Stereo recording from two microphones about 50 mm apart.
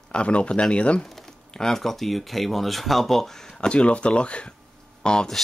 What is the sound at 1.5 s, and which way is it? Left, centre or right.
Speech, centre.